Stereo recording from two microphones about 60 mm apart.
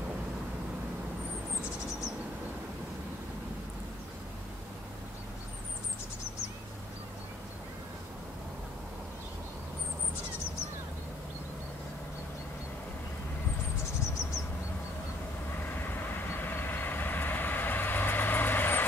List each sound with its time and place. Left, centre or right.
16.3 s vehicle: left